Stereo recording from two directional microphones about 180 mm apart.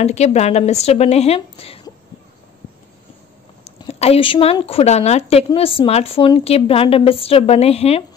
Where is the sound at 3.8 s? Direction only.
35° left (ahead or behind).